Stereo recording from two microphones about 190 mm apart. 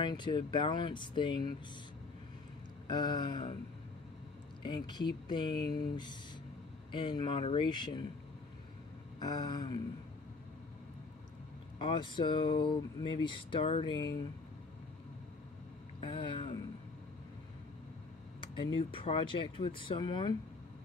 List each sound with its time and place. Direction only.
0.0 s speech: 25° left (ahead or behind)
2.9 s speech: 25° left (ahead or behind)
4.6 s speech: 20° left (ahead or behind)
6.9 s speech: 25° left (ahead or behind)
9.2 s speech: 20° left (ahead or behind)
11.8 s speech: 25° left (ahead or behind)
16.0 s speech: 25° left (ahead or behind)
18.8 s speech: 30° left (ahead or behind)